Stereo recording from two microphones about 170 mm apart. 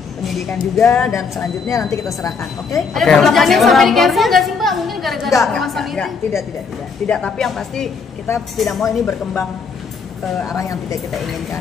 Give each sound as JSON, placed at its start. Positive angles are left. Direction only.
{"t": 0.2, "sound": "speech", "side_deg": 5}
{"t": 1.7, "sound": "a woman's voice", "side_deg": 20}
{"t": 2.7, "sound": "a woman's voice", "side_deg": 0}
{"t": 10.5, "sound": "a woman's voice", "side_deg": 20}